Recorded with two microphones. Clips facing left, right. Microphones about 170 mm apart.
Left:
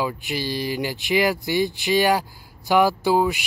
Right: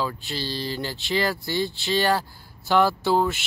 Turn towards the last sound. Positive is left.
turn(degrees=10)  # may be behind; listen again after turning